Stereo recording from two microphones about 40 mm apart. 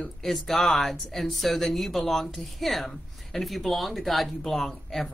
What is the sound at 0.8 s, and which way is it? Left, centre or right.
Speech, centre.